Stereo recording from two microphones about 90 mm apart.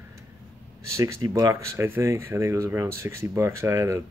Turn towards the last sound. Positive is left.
turn(degrees=-35)  # may be behind; listen again after turning